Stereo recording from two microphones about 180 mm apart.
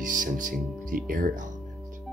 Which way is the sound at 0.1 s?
45° right (ahead or behind).